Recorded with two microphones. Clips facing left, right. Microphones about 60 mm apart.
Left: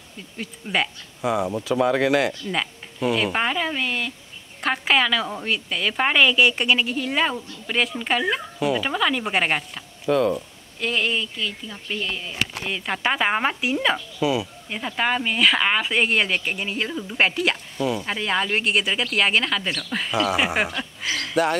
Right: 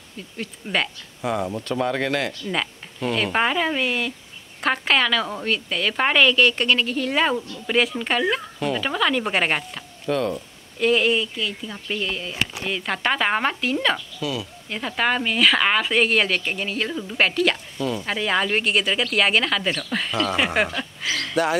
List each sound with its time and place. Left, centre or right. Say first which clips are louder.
0.4 s speech: even; centre
14.2 s speech: left 7 dB; left
14.7 s speech: right 1 dB; centre